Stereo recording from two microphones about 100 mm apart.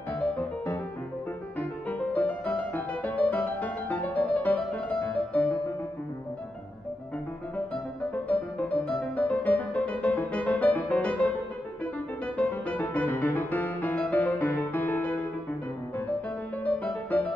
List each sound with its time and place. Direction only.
1.6 s music: 15° left (ahead or behind)
8.3 s music: 15° left (ahead or behind)
12.4 s music: 15° left (ahead or behind)
16.6 s music: 15° left (ahead or behind)